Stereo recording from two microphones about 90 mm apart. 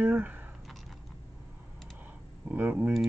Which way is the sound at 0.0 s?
20° right (ahead or behind).